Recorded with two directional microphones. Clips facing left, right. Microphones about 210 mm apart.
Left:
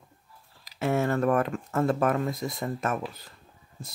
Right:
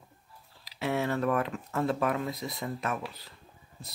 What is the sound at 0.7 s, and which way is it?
Speech, 45° left (ahead or behind).